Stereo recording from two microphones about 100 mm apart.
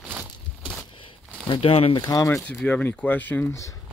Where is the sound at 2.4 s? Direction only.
15° left (ahead or behind).